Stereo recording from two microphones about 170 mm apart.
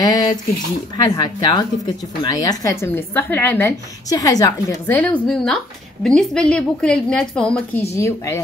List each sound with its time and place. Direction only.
0.0 s a woman's voice: 20° left (ahead or behind); by 7.8 s 5° left (ahead or behind)
7.9 s a woman's voice: 15° left (ahead or behind)